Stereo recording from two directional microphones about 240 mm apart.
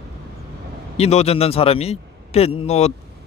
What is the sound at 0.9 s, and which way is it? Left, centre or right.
Speech, left.